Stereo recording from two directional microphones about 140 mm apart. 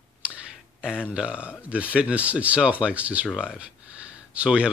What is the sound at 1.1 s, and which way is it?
Speech, 10° right (ahead or behind).